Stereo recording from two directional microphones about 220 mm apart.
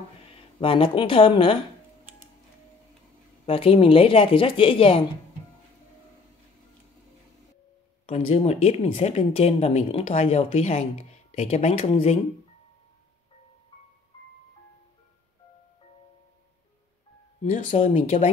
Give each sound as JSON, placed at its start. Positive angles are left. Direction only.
{"t": 0.3, "sound": "speech", "side_deg": 25}
{"t": 3.4, "sound": "speech", "side_deg": 25}
{"t": 8.1, "sound": "speech", "side_deg": 25}
{"t": 17.4, "sound": "speech", "side_deg": 30}